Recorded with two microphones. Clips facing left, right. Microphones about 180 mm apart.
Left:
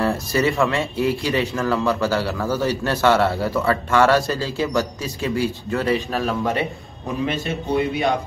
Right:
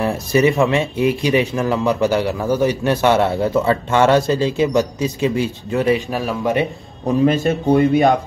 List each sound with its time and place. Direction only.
0.0 s speech: 15° right (ahead or behind)
7.2 s speech: 45° right (ahead or behind)